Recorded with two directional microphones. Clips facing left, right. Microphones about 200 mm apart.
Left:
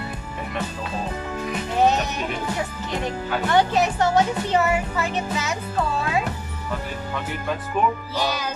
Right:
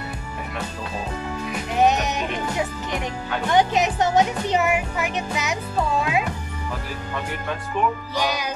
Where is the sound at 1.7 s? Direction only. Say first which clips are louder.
Right 1 dB; 15° right (ahead or behind).